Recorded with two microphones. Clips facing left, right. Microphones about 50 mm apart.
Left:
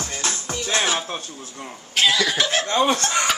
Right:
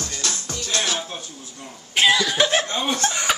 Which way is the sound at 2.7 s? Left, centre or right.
Left.